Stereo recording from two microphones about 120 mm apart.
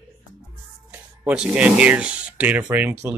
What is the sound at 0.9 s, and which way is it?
Speech, 10° right (ahead or behind).